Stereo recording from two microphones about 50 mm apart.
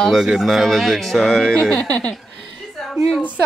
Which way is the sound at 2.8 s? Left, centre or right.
Centre.